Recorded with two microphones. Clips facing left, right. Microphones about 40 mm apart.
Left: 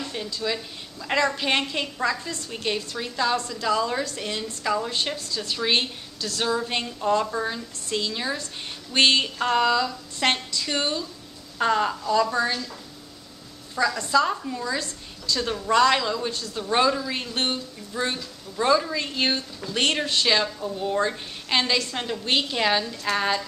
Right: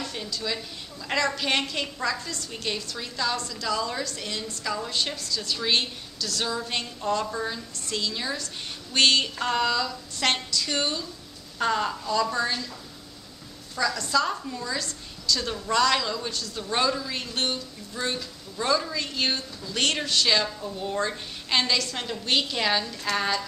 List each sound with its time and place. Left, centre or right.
0.0 s a sound: centre
1.0 s a woman's voice: centre
5.1 s a woman's voice: left; by 12.5 s centre
13.7 s speech: centre
16.3 s a woman's voice: left
16.5 s speech: centre
20.6 s speech: centre